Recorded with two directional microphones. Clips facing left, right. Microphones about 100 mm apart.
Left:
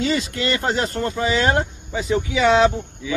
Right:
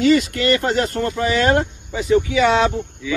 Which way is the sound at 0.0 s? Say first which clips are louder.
Right 6 dB; 25° left (ahead or behind).